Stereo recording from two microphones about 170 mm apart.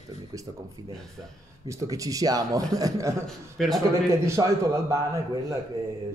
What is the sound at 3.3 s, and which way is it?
Speech, centre (ahead or behind).